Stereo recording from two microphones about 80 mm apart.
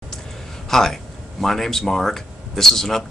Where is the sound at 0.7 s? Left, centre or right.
Centre.